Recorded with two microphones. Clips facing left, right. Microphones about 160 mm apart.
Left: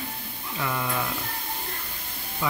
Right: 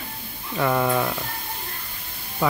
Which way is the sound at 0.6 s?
55° right (ahead or behind).